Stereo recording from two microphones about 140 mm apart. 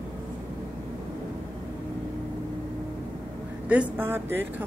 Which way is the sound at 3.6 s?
10° right (ahead or behind).